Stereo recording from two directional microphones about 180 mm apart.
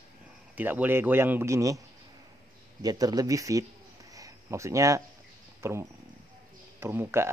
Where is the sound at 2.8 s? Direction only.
20° right (ahead or behind).